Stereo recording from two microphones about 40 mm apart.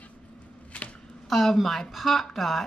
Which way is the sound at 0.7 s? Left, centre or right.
Left.